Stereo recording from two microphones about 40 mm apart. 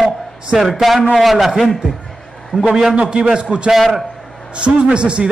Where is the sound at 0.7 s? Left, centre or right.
Centre.